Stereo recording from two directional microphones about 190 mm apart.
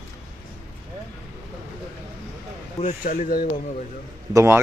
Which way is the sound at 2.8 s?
40° left (ahead or behind).